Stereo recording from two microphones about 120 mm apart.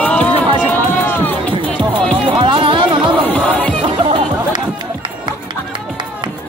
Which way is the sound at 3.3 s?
15° left (ahead or behind).